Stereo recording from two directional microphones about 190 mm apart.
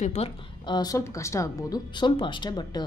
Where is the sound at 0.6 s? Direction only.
20° left (ahead or behind).